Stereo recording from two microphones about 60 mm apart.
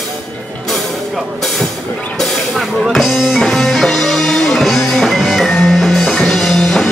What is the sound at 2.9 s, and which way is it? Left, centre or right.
Music, centre.